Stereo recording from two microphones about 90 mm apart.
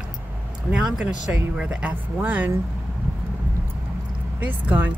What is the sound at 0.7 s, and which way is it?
Speech, 10° right (ahead or behind).